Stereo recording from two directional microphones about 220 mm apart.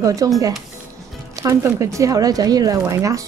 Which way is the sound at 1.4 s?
15° right (ahead or behind).